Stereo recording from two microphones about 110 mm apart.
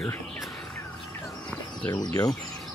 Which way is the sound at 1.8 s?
40° left (ahead or behind).